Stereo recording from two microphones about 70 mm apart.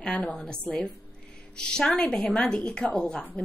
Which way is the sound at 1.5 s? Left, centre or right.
Centre.